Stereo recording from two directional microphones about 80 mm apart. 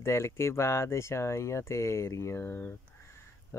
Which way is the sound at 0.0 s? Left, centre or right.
Left.